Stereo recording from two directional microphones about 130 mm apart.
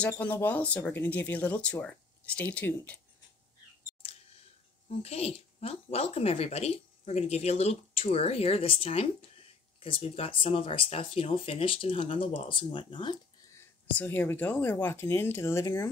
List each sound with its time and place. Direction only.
0.0 s speech: 10° left (ahead or behind)
4.0 s a sound: 45° left (ahead or behind)
4.8 s speech: 50° left (ahead or behind)
13.9 s speech: 15° left (ahead or behind)